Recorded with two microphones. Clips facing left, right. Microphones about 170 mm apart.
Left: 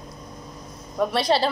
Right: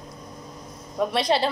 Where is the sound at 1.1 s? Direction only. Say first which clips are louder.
Left 1 dB; 20° right (ahead or behind).